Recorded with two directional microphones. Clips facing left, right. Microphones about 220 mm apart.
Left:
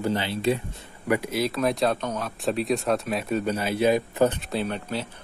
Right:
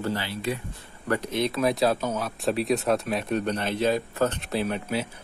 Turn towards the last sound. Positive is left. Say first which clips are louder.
# right 1 dB
turn(degrees=-5)  # may be behind; listen again after turning